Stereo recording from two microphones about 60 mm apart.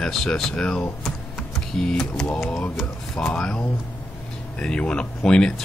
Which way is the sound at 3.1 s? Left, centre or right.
Centre.